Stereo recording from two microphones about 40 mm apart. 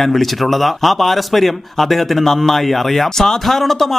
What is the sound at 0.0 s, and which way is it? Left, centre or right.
A man's voice, centre.